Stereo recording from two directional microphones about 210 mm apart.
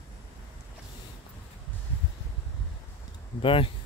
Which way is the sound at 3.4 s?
25° left (ahead or behind).